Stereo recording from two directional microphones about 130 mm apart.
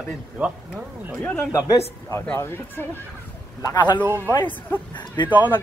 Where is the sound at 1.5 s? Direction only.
20° left (ahead or behind).